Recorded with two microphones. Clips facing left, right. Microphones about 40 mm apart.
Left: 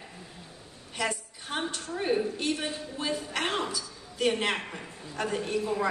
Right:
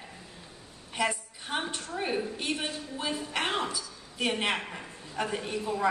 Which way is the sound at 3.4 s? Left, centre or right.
Centre.